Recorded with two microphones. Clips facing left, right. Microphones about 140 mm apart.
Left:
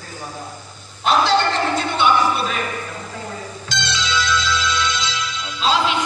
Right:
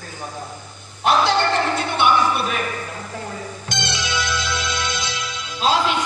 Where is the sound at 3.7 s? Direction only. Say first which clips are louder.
Left 2 dB; 55° right (ahead or behind).